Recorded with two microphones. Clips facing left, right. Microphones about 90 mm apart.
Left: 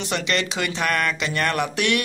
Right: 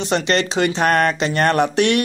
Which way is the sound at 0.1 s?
35° right (ahead or behind).